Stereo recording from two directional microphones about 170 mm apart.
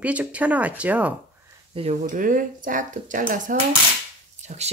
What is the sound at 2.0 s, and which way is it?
Speech, 50° right (ahead or behind).